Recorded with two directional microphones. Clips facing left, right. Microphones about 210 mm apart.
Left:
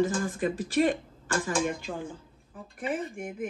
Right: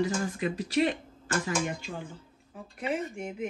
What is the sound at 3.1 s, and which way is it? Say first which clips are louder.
Speech: even; 50° left (ahead or behind).